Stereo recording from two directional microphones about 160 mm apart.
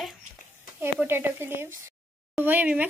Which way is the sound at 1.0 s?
15° right (ahead or behind).